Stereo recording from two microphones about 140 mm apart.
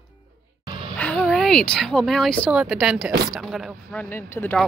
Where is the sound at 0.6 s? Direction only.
35° right (ahead or behind).